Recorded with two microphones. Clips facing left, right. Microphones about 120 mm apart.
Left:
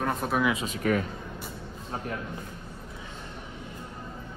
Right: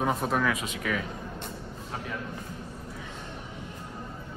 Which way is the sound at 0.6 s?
40° left (ahead or behind).